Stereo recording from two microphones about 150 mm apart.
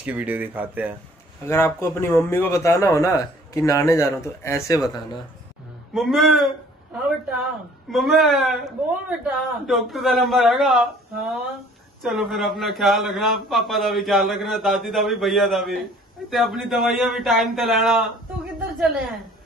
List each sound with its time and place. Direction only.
0.0 s speech: 10° right (ahead or behind)
1.5 s speech: 15° left (ahead or behind)
5.9 s a man's voice: centre (ahead or behind)